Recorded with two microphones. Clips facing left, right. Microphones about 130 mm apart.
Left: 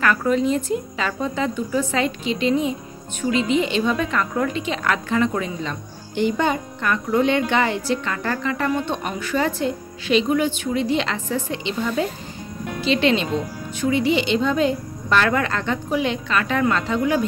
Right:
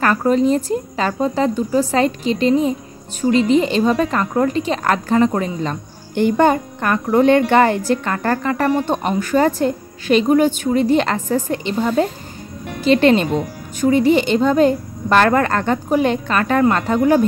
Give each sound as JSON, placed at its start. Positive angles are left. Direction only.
{"t": 0.0, "sound": "a woman's voice", "side_deg": -35}